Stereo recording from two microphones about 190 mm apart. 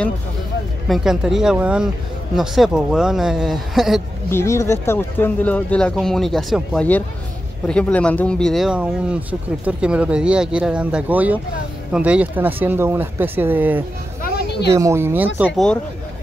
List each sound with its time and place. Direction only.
0.8 s speech: centre (ahead or behind)
4.3 s speech: 15° left (ahead or behind); by 13.8 s 10° right (ahead or behind)
14.2 s music: 60° left (ahead or behind)
14.7 s speech: 15° right (ahead or behind)